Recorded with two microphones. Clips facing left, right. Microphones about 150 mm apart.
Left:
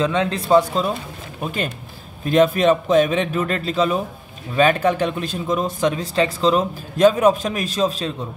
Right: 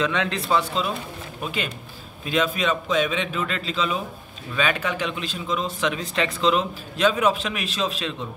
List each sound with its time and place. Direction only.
0.0 s a man's voice: 35° left (ahead or behind)